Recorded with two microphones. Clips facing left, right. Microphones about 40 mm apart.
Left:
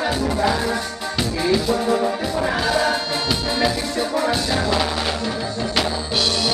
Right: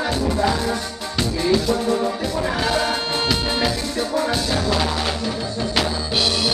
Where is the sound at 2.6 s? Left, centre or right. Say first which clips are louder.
Left 1 dB; centre.